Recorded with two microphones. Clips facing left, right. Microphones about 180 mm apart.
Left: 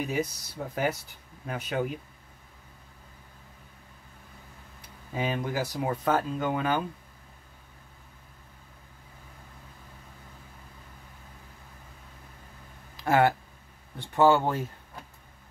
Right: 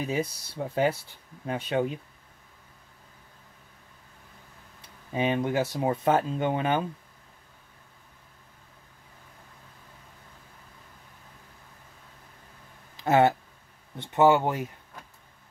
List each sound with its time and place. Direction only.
0.0 s speech: 30° right (ahead or behind)
4.8 s speech: 20° right (ahead or behind)
12.9 s speech: 25° right (ahead or behind)